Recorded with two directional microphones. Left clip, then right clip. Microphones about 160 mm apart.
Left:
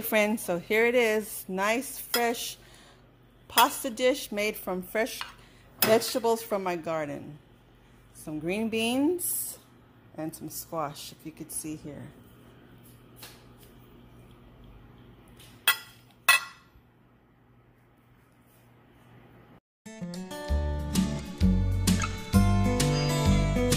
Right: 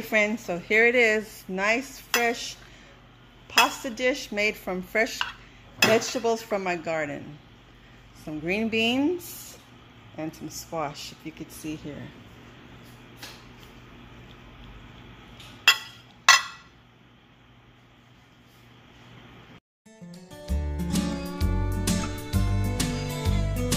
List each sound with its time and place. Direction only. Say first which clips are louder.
0.1 s a woman's voice: right 2 dB; 45° left (ahead or behind)
0.6 s speech: right 4 dB; 30° left (ahead or behind)
1.5 s dishes: right 3 dB; 35° left (ahead or behind)
5.9 s speech: right 1 dB; 35° left (ahead or behind)
8.3 s speech: right 3 dB; 25° left (ahead or behind)
10.2 s speech: right 2 dB; 25° left (ahead or behind)
19.8 s music: left 9 dB; 5° left (ahead or behind)